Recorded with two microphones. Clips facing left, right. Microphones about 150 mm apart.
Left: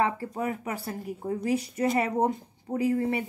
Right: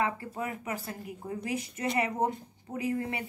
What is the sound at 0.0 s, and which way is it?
Speech, 35° left (ahead or behind).